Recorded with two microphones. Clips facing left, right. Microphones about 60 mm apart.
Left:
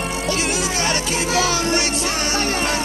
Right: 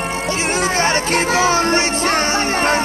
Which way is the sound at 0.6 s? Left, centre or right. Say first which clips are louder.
Right 5 dB; right.